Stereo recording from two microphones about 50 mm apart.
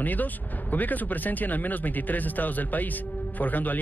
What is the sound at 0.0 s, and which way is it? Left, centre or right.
Speech, left.